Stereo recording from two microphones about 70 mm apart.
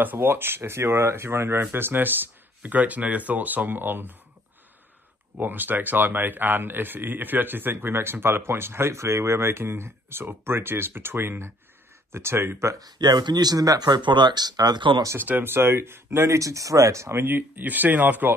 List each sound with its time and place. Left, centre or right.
0.0 s speech: right
5.4 s speech: right
12.7 s speech: right
15.1 s speech: right
17.3 s speech: right